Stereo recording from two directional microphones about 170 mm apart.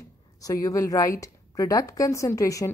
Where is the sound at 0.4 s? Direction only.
20° left (ahead or behind).